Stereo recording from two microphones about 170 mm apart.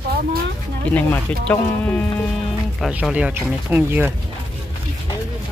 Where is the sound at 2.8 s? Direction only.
5° right (ahead or behind).